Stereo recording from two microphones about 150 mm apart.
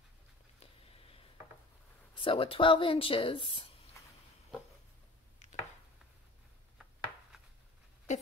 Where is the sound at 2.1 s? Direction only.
35° left (ahead or behind).